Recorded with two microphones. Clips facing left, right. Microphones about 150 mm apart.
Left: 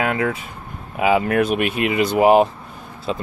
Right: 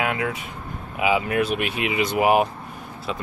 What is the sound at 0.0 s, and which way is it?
Speech, 40° left (ahead or behind).